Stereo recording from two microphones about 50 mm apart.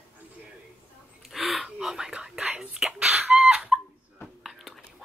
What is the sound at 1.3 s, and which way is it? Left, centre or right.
Whispering, centre.